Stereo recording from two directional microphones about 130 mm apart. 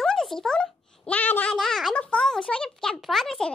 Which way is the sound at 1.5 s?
Centre (ahead or behind).